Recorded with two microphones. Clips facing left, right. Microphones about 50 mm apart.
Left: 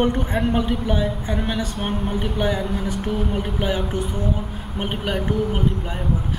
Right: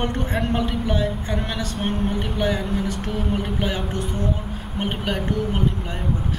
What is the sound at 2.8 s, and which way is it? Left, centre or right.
Music, centre.